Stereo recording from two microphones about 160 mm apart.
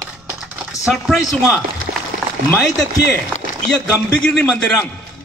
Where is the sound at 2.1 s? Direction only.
65° right (ahead or behind).